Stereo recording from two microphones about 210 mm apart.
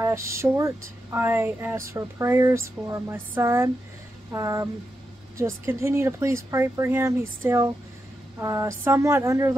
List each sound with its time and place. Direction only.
0.0 s speech: 15° right (ahead or behind)